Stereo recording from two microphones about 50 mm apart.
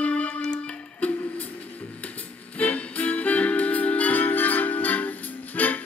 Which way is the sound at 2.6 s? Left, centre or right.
Left.